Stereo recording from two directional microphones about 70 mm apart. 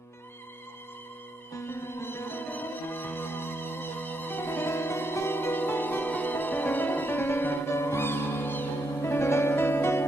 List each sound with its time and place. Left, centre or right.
1.6 s music: left